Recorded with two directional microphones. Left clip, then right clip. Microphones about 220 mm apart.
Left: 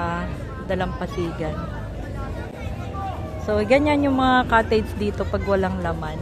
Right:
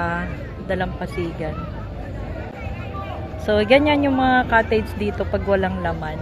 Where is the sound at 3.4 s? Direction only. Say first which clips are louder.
Right 3 dB; 10° left (ahead or behind).